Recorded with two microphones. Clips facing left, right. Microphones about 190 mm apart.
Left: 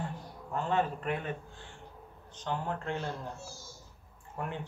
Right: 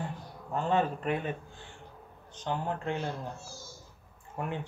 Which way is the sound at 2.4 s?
15° right (ahead or behind).